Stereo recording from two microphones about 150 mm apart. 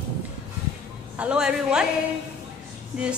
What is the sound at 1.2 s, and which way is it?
Speech, 5° right (ahead or behind).